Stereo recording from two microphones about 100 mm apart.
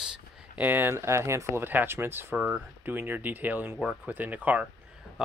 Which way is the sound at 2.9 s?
20° right (ahead or behind).